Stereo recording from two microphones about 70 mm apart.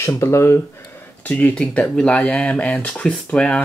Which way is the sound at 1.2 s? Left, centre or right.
Centre.